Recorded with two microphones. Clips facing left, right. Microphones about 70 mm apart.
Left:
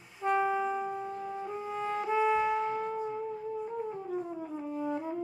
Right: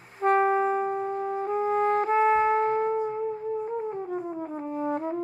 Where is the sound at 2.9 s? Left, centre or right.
Right.